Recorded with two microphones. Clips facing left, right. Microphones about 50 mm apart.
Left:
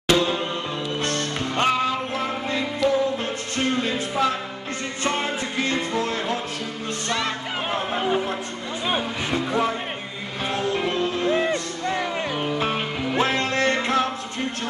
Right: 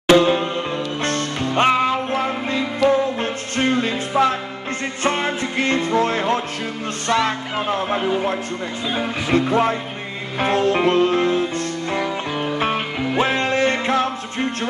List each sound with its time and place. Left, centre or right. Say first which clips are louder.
0.1 s music: right 7 dB; right
1.5 s music: right 5 dB; right
7.1 s music: right 8 dB; centre
9.0 s music: right 6 dB; right
12.7 s music: right 3 dB; centre